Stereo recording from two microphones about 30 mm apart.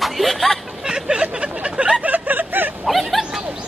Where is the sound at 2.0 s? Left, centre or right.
Right.